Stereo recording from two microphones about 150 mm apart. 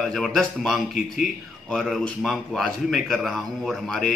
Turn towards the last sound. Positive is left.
turn(degrees=0)  # may be behind; listen again after turning